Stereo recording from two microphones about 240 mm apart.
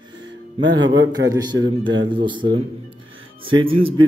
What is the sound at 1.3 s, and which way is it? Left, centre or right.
A man's voice, centre.